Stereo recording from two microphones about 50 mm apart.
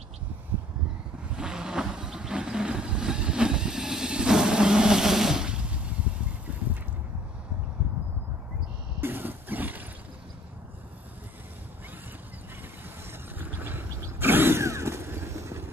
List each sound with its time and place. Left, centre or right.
1.3 s vehicle: centre
9.0 s a sound: right
13.4 s vehicle: right
14.2 s mechanisms: right
14.6 s vehicle: right
15.3 s vehicle: right